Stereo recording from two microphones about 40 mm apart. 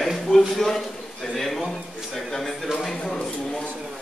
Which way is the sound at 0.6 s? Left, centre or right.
Centre.